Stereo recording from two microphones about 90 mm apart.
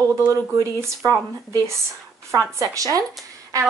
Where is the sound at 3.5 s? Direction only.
35° right (ahead or behind).